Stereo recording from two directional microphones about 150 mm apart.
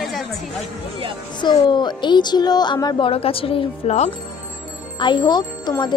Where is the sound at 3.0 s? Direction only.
40° left (ahead or behind).